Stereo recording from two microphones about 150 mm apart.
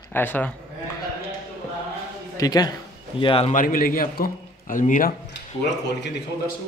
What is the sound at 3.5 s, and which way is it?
A man's voice, 65° left (ahead or behind).